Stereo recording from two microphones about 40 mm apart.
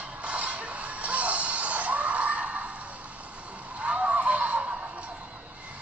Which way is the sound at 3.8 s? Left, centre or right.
Right.